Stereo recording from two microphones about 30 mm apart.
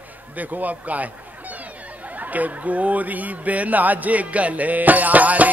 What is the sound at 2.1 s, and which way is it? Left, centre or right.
Mantra, right.